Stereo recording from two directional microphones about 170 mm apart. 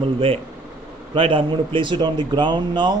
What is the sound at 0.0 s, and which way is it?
A man's voice, 30° right (ahead or behind).